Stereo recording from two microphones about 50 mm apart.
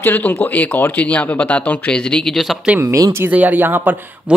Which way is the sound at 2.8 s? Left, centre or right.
Right.